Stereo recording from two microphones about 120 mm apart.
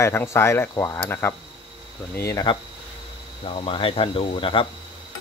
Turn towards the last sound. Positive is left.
turn(degrees=50)  # may be behind; listen again after turning